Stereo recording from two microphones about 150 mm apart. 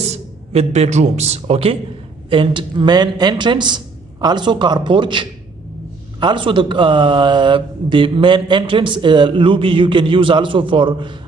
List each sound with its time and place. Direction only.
0.1 s speech: 45° right (ahead or behind)